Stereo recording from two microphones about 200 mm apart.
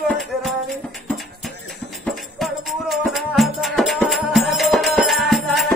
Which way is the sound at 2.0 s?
Centre (ahead or behind).